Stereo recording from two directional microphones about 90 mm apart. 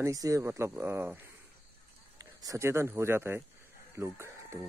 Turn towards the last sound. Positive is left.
turn(degrees=-30)  # may be behind; listen again after turning